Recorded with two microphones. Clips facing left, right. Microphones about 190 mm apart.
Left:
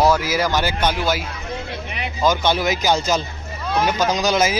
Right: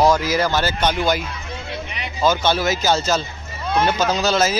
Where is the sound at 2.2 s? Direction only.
15° left (ahead or behind).